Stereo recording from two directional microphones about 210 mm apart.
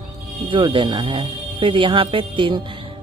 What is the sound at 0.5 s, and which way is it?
Speech, 25° right (ahead or behind).